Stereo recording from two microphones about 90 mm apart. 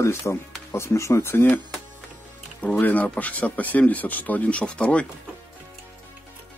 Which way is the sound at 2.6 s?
20° left (ahead or behind).